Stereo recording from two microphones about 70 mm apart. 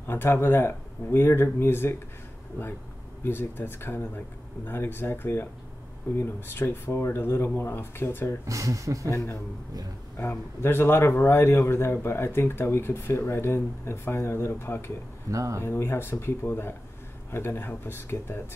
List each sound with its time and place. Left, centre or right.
0.0 s speech: left
3.3 s speech: left
8.5 s speech: right
9.1 s speech: left
10.6 s speech: left
15.3 s speech: right
15.6 s speech: left